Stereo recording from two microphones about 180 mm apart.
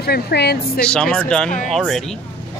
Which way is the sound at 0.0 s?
65° left (ahead or behind).